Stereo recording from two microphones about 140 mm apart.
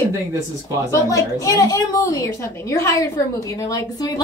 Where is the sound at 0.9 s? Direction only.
25° left (ahead or behind).